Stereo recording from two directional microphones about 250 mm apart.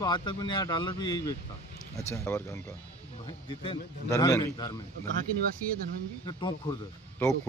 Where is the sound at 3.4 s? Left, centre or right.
Centre.